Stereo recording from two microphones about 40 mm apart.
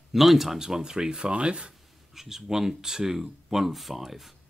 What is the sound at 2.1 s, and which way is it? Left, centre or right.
Speech, centre.